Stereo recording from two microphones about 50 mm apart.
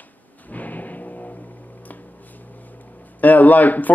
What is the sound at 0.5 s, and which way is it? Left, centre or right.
Music, left.